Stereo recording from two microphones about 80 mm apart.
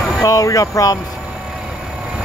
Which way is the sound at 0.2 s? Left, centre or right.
Left.